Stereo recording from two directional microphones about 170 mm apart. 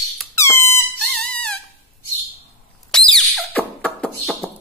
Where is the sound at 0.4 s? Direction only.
15° left (ahead or behind).